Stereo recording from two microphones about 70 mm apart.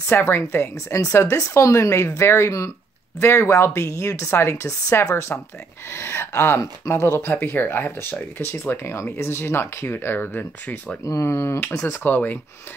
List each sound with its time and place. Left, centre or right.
0.1 s speech: left
7.4 s speech: left
11.1 s speech: left